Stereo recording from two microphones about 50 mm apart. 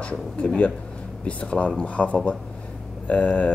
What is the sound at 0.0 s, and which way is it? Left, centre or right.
Speech, left.